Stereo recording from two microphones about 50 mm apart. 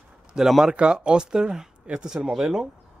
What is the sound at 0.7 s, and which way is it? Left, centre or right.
Speech, right.